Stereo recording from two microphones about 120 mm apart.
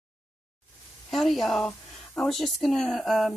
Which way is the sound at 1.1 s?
Centre (ahead or behind).